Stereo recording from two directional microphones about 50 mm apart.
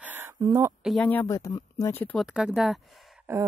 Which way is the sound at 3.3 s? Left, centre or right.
Right.